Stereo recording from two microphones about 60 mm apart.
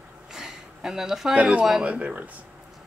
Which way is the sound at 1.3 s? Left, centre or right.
Right.